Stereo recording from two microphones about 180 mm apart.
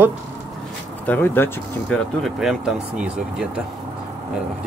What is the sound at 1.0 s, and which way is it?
Speech, 10° left (ahead or behind).